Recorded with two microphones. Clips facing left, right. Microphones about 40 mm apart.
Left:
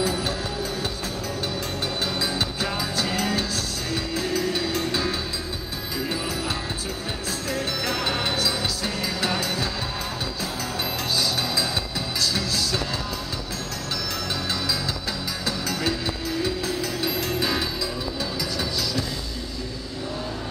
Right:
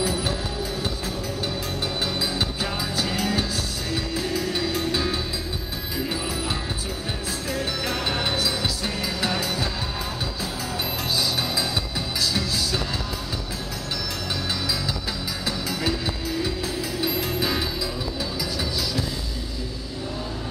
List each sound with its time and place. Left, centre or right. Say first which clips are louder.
0.0 s music: even; centre
2.1 s music: even; centre
7.5 s music: left 1 dB; centre
12.2 s music: even; centre
15.4 s music: even; centre